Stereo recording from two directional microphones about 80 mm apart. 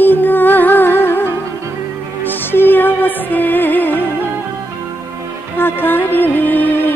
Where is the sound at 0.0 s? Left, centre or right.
Left.